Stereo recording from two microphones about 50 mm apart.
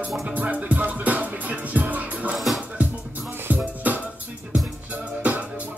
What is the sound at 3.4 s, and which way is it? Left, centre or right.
Music, right.